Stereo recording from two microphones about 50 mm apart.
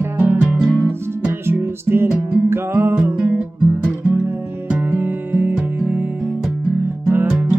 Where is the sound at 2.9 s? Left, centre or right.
Right.